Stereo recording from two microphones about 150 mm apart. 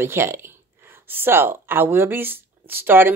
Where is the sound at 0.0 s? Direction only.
15° right (ahead or behind).